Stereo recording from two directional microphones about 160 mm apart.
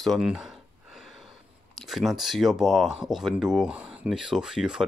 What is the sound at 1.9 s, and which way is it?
Speech, centre (ahead or behind).